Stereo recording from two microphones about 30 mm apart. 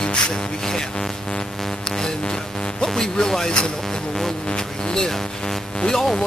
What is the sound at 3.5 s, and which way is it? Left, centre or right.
Speech, left.